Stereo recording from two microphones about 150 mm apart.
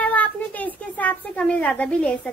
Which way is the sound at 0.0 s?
10° left (ahead or behind).